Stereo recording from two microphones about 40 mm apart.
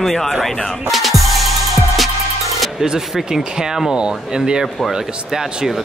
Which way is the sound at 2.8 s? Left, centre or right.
Centre.